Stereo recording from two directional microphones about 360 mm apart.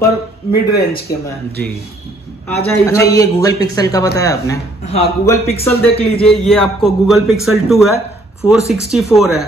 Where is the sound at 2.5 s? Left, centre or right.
Centre.